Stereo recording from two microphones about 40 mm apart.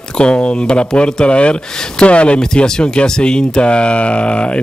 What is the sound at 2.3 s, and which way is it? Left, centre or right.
Speech, centre.